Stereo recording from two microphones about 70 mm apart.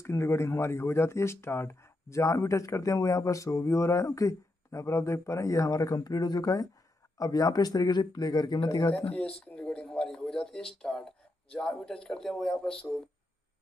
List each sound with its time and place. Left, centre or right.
0.0 s speech: left
8.9 s speech: centre